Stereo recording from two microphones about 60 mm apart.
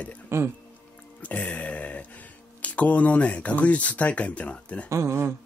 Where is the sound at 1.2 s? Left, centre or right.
Left.